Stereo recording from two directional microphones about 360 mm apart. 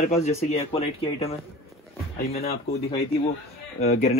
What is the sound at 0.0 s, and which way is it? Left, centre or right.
Speech, centre.